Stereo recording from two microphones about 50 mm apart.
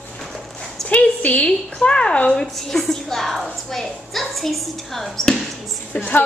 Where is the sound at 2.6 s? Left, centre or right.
Centre.